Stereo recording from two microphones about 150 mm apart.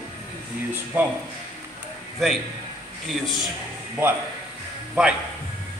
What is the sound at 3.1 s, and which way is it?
Speech, centre (ahead or behind).